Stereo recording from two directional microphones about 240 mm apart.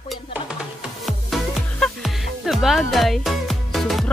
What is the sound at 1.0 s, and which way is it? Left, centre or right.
Music, centre.